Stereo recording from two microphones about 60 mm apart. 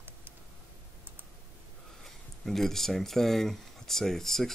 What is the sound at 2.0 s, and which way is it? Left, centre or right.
Speech, centre.